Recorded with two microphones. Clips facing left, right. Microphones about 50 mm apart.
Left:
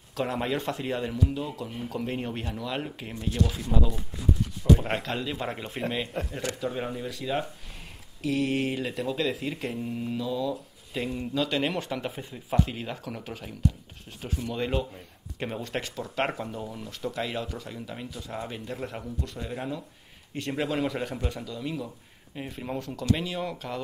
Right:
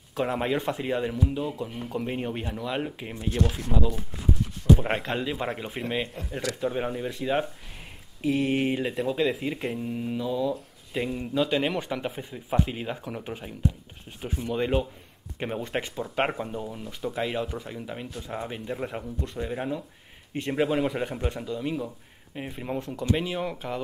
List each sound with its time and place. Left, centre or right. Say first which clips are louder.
0.2 s a man's voice: right 2 dB; centre
3.4 s speech: right 2 dB; right
4.7 s a sound: right 1 dB; centre
5.0 s a man's voice: right 2 dB; centre
6.5 s speech: right 2 dB; left
6.8 s speech: right 3 dB; centre
7.1 s a man's voice: right 3 dB; right
9.8 s mantra: right 1 dB; centre
10.1 s a man's voice: right 2 dB; centre
10.9 s a man's voice: right 2 dB; centre